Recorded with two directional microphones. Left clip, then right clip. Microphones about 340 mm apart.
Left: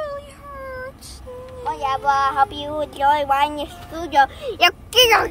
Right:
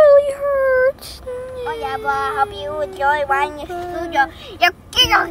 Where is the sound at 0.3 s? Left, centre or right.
Centre.